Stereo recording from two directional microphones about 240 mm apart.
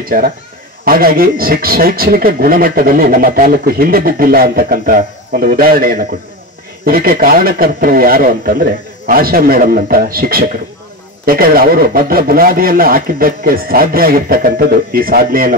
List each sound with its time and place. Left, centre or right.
0.8 s speech: right